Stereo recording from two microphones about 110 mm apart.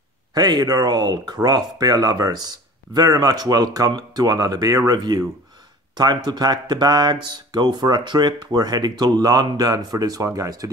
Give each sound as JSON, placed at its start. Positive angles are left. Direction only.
{"t": 0.3, "sound": "speech", "side_deg": -40}